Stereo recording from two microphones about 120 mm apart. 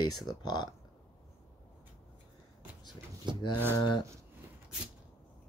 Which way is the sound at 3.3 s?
40° right (ahead or behind).